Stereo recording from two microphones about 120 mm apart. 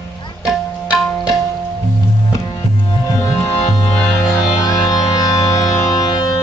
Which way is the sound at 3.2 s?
30° left (ahead or behind).